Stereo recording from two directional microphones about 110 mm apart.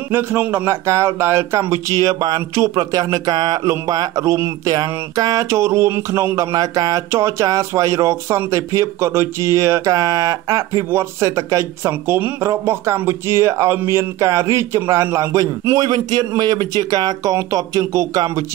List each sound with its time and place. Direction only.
0.1 s speech: 20° right (ahead or behind)